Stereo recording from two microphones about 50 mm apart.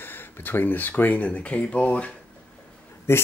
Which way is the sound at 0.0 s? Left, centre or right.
Left.